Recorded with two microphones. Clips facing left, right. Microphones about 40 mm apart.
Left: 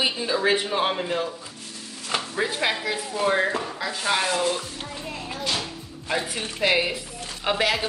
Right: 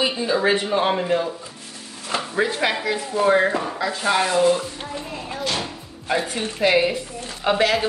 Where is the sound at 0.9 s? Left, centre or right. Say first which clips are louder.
Right 5 dB; centre.